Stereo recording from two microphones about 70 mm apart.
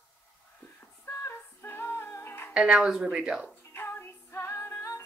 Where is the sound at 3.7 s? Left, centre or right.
Left.